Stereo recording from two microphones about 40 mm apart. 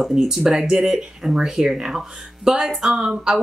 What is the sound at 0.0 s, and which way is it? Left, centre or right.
A woman's voice, centre.